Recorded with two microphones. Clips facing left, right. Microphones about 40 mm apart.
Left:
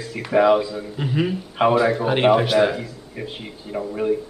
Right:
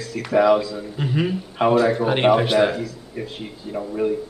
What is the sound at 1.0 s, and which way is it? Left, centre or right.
Speech, centre.